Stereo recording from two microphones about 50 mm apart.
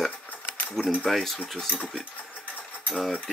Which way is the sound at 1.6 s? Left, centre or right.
Left.